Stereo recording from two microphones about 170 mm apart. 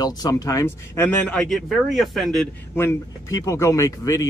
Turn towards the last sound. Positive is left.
turn(degrees=20)  # may be behind; listen again after turning